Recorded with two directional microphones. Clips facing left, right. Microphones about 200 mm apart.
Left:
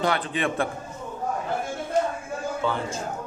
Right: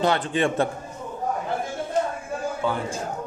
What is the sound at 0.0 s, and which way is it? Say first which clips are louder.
Speech: right 3 dB; 25° right (ahead or behind).